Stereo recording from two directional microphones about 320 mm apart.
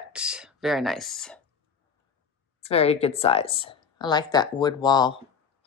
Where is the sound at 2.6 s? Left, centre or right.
Centre.